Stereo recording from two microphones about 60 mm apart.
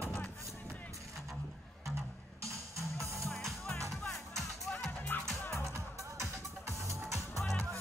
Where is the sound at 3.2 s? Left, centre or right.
Centre.